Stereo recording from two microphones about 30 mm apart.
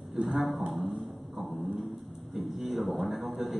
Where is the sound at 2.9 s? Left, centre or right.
Centre.